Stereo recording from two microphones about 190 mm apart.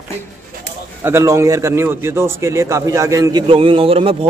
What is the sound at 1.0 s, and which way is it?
A man's voice, 15° right (ahead or behind).